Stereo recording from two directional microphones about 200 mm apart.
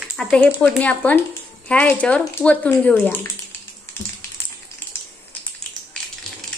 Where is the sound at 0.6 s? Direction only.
5° left (ahead or behind).